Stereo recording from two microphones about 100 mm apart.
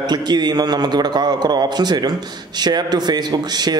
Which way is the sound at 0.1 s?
45° right (ahead or behind).